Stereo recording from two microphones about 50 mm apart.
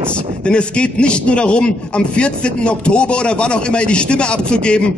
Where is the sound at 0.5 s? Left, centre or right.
Left.